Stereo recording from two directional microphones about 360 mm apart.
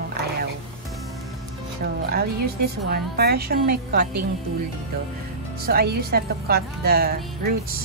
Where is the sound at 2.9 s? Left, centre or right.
Right.